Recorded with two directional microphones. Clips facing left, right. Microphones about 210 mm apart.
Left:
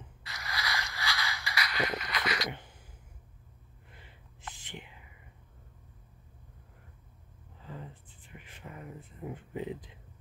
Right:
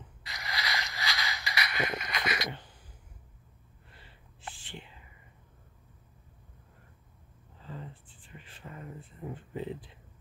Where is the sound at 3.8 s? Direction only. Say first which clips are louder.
Left 1 dB; 15° left (ahead or behind).